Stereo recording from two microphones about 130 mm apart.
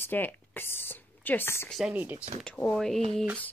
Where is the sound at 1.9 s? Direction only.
15° right (ahead or behind).